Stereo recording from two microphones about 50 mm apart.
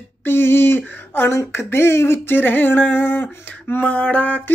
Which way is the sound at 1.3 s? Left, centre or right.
Left.